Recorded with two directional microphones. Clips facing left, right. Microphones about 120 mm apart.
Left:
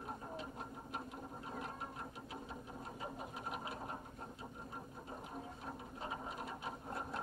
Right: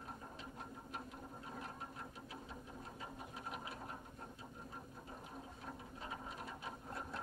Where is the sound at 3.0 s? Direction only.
20° left (ahead or behind).